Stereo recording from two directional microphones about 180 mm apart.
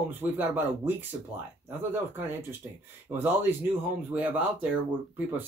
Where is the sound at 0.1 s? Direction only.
10° right (ahead or behind).